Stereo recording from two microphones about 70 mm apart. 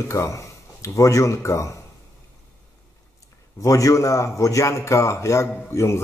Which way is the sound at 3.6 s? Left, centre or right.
Left.